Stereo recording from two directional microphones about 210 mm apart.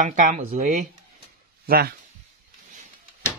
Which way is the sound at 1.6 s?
45° right (ahead or behind).